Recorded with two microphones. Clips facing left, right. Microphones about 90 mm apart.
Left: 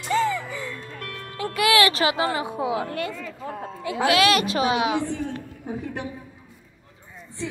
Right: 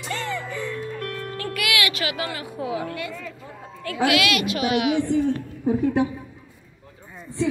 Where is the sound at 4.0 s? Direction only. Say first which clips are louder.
Left 2 dB; 35° left (ahead or behind).